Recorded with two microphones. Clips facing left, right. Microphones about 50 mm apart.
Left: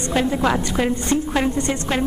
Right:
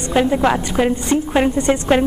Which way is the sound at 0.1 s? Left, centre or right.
Centre.